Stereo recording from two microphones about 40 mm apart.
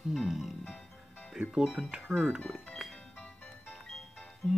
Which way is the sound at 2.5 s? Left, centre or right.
Centre.